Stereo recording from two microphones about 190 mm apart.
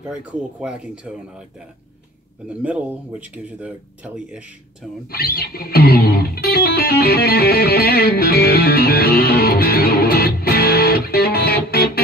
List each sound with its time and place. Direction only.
0.1 s speech: 5° right (ahead or behind)
2.6 s speech: 5° right (ahead or behind)
5.1 s music: 55° left (ahead or behind)